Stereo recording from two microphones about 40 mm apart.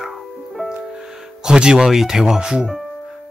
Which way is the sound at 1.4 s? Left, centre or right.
Centre.